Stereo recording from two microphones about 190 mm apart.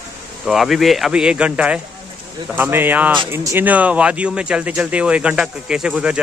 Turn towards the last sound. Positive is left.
turn(degrees=-5)  # may be behind; listen again after turning